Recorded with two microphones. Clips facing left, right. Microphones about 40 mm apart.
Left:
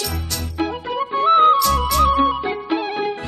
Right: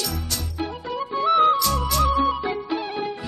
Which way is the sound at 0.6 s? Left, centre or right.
Left.